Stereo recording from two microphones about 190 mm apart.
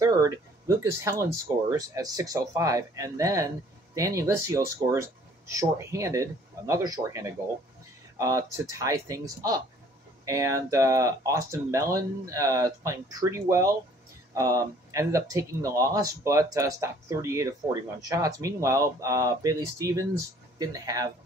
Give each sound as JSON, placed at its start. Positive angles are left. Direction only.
{"t": 0.0, "sound": "speech", "side_deg": -15}